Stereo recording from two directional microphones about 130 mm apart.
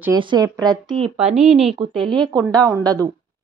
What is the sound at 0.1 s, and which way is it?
Speech, 35° right (ahead or behind).